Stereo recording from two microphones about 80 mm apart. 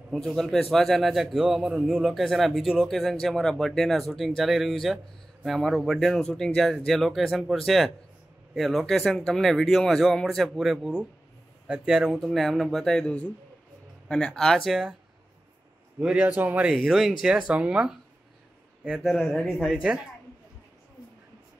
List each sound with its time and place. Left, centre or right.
0.1 s a man's voice: centre
16.0 s a man's voice: centre
16.7 s a man's voice: centre
19.0 s a man's voice: centre
19.5 s a man's voice: centre